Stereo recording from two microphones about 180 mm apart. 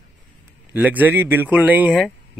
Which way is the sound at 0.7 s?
10° right (ahead or behind).